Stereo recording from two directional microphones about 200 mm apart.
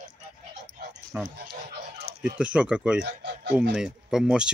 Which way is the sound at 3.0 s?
55° right (ahead or behind).